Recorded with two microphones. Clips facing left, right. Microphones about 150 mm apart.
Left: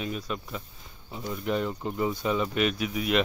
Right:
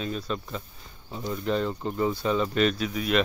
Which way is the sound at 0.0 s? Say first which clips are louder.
Right 2 dB; 15° left (ahead or behind).